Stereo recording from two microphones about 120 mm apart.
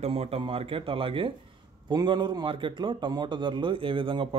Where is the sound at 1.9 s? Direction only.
40° right (ahead or behind).